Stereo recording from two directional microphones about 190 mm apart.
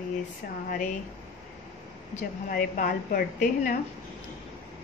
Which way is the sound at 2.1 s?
45° left (ahead or behind).